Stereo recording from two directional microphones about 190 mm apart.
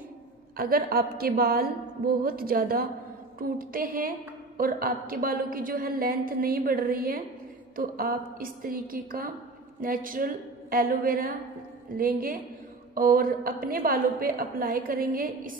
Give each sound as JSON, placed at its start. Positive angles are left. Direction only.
{"t": 0.6, "sound": "a woman's voice", "side_deg": -50}